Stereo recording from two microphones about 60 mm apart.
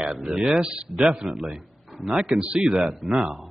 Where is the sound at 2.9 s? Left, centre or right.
Centre.